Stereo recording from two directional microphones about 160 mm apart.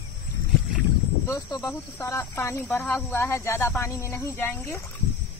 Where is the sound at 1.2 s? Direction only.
20° left (ahead or behind).